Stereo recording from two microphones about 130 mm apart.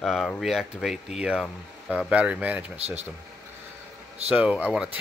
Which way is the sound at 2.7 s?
50° right (ahead or behind).